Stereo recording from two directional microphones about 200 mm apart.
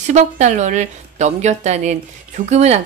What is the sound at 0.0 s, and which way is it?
A woman's voice, 35° right (ahead or behind).